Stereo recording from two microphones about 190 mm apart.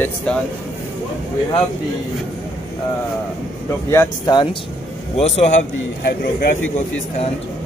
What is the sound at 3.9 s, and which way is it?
Speech, 20° left (ahead or behind).